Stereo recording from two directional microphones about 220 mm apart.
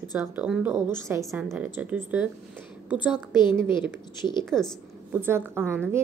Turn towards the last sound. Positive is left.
turn(degrees=-10)  # may be behind; listen again after turning